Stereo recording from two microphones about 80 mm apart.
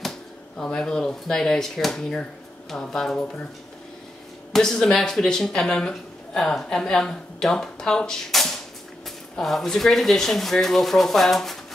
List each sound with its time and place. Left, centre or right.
0.6 s speech: centre
4.5 s speech: centre